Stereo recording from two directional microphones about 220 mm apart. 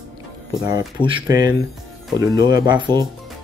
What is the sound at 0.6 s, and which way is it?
Speech, 20° right (ahead or behind).